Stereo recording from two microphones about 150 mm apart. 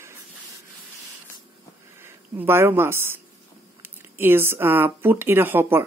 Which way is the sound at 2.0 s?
15° right (ahead or behind).